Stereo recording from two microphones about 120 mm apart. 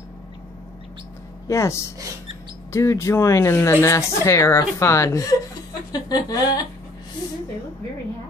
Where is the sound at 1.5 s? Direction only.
25° left (ahead or behind).